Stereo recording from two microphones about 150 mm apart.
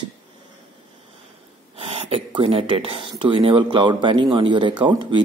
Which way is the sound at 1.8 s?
40° right (ahead or behind).